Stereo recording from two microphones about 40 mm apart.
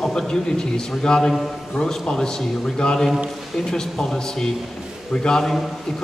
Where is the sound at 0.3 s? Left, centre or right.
Centre.